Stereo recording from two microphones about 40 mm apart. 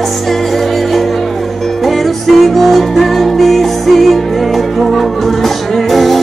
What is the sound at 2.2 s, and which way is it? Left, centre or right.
Music, centre.